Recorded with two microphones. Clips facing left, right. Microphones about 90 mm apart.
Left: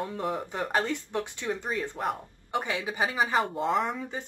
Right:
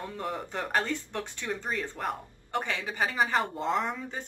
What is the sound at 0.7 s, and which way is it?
Speech, 15° left (ahead or behind).